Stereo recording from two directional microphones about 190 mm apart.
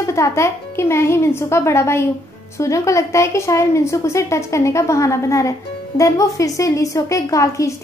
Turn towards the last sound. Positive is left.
turn(degrees=15)  # may be behind; listen again after turning